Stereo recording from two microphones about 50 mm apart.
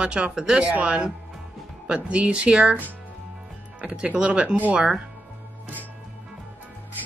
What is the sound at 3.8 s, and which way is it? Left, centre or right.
Speech, right.